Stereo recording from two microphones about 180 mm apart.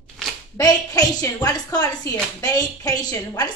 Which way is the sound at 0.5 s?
20° left (ahead or behind).